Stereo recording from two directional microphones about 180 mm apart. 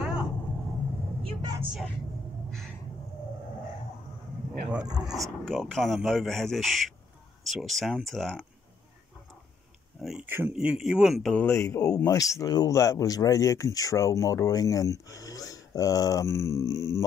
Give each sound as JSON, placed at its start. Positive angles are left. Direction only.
{"t": 0.0, "sound": "vehicle", "side_deg": -5}
{"t": 1.2, "sound": "vehicle", "side_deg": -25}
{"t": 1.6, "sound": "speech", "side_deg": -5}
{"t": 4.9, "sound": "speech", "side_deg": 0}
{"t": 9.9, "sound": "speech", "side_deg": -5}